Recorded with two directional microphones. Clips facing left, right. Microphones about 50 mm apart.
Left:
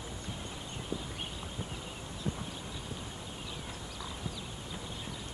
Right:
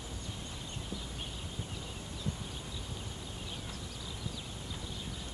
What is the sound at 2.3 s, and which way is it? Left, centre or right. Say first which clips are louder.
Clip-clop: left 3 dB; left.